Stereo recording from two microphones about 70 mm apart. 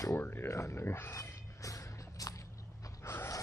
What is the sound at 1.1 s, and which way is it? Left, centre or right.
Music, left.